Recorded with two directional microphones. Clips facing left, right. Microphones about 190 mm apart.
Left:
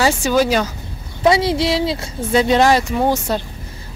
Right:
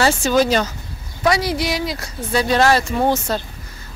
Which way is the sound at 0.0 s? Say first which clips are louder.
Even; 10° left (ahead or behind).